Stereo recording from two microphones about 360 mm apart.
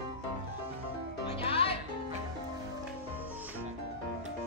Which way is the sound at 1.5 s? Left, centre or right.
Centre.